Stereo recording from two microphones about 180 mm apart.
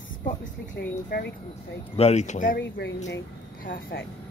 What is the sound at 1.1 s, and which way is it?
Speech, 55° left (ahead or behind).